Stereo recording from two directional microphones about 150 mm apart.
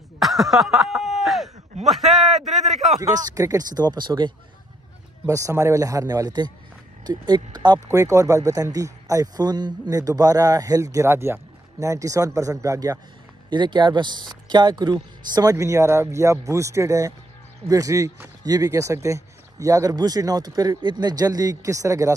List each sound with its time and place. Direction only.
0.2 s snicker: centre (ahead or behind)
1.9 s a man's voice: centre (ahead or behind)
3.0 s speech: 25° right (ahead or behind)
5.3 s speech: 20° right (ahead or behind)